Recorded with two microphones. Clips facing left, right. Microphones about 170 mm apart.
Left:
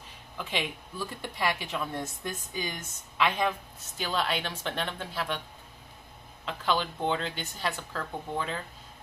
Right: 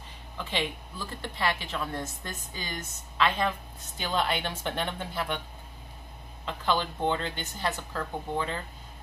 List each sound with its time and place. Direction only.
0.4 s a woman's voice: 10° left (ahead or behind)
4.0 s a woman's voice: centre (ahead or behind)
6.4 s a woman's voice: centre (ahead or behind)